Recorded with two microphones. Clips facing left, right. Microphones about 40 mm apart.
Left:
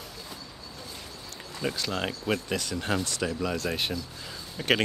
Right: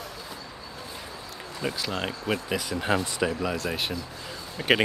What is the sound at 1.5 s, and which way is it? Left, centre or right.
Speech, centre.